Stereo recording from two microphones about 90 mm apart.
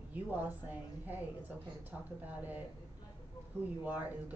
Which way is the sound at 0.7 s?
20° right (ahead or behind).